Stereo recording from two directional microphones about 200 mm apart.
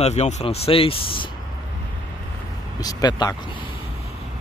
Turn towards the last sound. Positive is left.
turn(degrees=20)  # may be behind; listen again after turning